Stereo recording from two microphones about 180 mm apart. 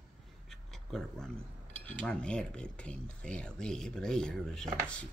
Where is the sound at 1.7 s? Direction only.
5° left (ahead or behind).